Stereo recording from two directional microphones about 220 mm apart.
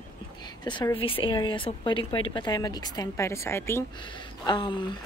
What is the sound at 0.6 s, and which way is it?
A woman's voice, 20° left (ahead or behind).